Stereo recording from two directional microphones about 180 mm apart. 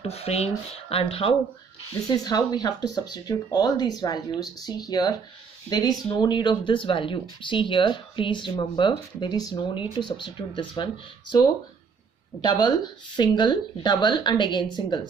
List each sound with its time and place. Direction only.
0.0 s speech: 35° left (ahead or behind)
12.4 s speech: 25° left (ahead or behind)